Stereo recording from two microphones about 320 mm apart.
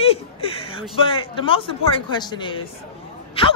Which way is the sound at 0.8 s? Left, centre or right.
Centre.